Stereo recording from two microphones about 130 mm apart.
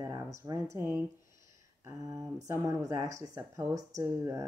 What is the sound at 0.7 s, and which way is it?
Speech, 20° right (ahead or behind).